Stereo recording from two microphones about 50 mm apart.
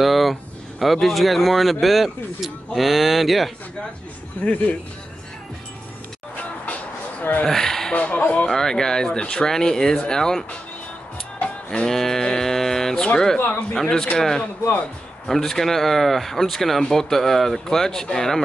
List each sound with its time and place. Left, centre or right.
0.0 s a sound: centre
1.0 s speech: centre
4.4 s speech: left
6.3 s music: left
7.4 s a sound: centre
7.9 s speech: left
8.5 s speech: centre
11.4 s music: left
11.9 s speech: centre
16.8 s speech: centre
17.1 s speech: centre